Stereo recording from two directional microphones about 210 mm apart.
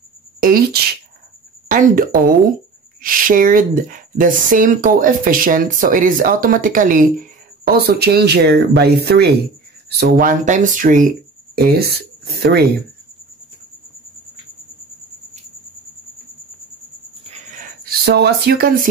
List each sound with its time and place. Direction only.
0.4 s speech: 45° right (ahead or behind)
10.0 s speech: 40° right (ahead or behind)
17.2 s a sound: 35° right (ahead or behind)